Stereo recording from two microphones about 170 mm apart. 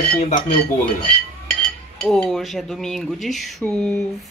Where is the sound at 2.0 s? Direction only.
Centre (ahead or behind).